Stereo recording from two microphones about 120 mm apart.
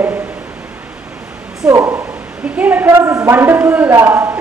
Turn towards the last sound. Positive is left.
turn(degrees=-20)  # may be behind; listen again after turning